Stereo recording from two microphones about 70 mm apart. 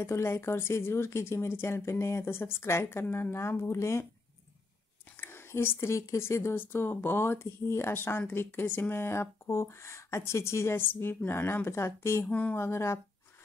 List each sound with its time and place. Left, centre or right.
0.0 s speech: left
5.1 s speech: left
12.3 s speech: centre
12.5 s speech: left